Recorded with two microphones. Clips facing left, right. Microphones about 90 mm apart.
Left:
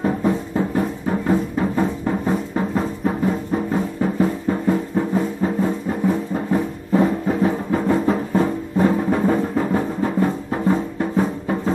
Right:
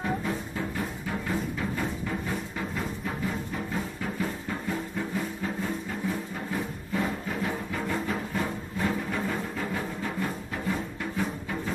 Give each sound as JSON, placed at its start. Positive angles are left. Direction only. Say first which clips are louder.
{"t": 0.0, "sound": "music", "louder": "left 10 dB", "side_deg": 40}